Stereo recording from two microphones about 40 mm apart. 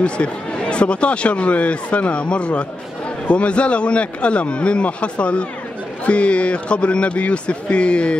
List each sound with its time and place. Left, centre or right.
0.0 s speech: left